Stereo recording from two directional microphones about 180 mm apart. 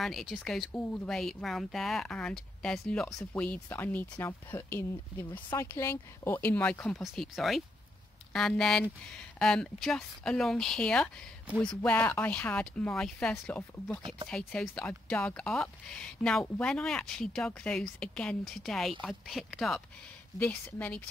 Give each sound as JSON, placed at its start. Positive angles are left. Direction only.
{"t": 0.0, "sound": "speech", "side_deg": 0}
{"t": 14.0, "sound": "speech", "side_deg": -25}
{"t": 14.3, "sound": "speech", "side_deg": 5}